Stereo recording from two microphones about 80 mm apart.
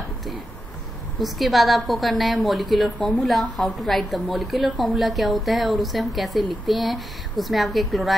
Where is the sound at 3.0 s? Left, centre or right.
Centre.